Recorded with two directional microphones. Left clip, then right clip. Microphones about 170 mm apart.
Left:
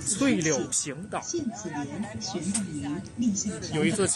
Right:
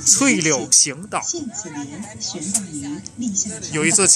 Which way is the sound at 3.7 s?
20° right (ahead or behind).